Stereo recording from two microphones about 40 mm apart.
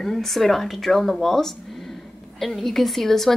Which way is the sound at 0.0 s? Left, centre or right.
Centre.